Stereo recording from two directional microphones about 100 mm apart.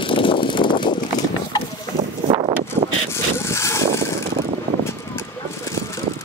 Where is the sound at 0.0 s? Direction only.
55° left (ahead or behind).